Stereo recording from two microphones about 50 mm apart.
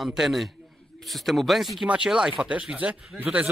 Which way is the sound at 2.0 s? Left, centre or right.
Centre.